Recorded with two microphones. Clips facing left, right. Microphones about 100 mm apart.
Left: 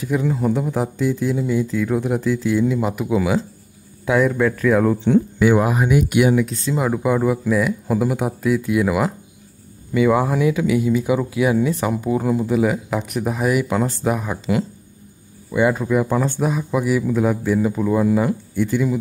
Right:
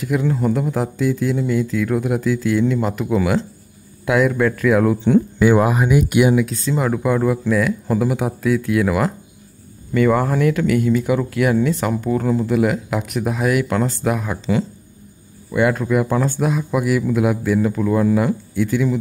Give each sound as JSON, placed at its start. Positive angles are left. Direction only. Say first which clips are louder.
{"t": 0.0, "sound": "speech", "louder": "right 1 dB", "side_deg": 0}
{"t": 6.6, "sound": "speech", "louder": "right 1 dB", "side_deg": 5}
{"t": 17.5, "sound": "speech", "louder": "right 1 dB", "side_deg": 5}